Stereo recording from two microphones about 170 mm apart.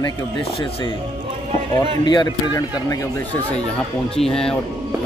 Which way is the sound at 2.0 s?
25° left (ahead or behind).